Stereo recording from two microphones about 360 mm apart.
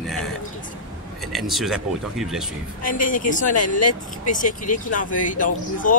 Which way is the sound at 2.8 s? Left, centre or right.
Left.